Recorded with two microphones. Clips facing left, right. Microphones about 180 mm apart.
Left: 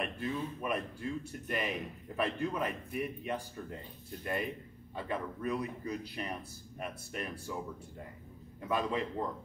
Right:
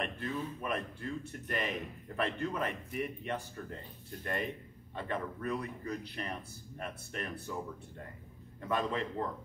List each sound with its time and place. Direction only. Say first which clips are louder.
0.0 s a man's voice: left 1 dB; 10° left (ahead or behind)
2.1 s a man's voice: left 1 dB; 10° left (ahead or behind)
8.5 s a man's voice: left 1 dB; 10° left (ahead or behind)